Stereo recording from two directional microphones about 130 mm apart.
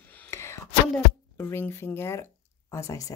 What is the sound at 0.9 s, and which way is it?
Speech, 15° left (ahead or behind).